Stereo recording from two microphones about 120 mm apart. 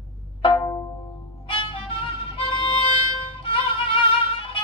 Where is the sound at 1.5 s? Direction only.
45° left (ahead or behind).